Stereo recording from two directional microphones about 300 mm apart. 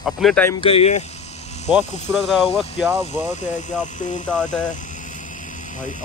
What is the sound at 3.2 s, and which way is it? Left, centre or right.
Speech, left.